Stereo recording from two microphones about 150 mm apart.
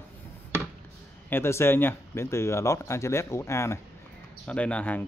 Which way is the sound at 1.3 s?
15° left (ahead or behind).